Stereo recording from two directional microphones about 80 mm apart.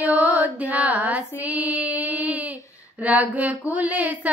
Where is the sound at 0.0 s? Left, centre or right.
Right.